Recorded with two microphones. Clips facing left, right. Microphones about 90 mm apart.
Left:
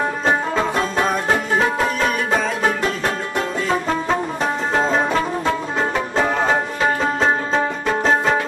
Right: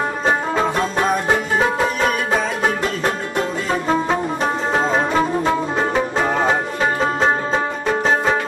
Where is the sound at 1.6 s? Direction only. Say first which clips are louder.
Right 1 dB; centre (ahead or behind).